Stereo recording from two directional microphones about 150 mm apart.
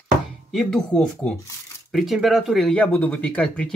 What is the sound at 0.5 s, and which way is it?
Speech, 5° left (ahead or behind).